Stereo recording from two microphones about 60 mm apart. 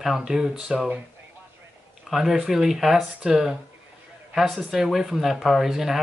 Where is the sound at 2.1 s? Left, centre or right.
Centre.